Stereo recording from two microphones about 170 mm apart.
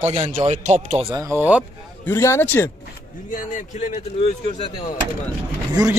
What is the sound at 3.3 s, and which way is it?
A man's voice, 45° left (ahead or behind).